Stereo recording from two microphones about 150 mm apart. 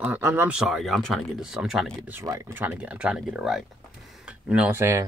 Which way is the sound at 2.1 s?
20° right (ahead or behind).